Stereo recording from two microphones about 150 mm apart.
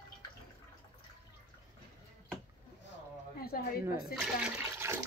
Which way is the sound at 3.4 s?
80° left.